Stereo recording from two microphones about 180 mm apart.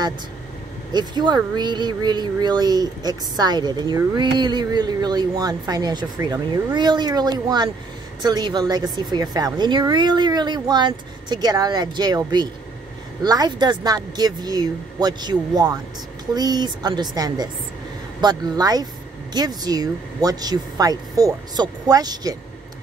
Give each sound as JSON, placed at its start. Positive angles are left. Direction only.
{"t": 0.9, "sound": "speech", "side_deg": -25}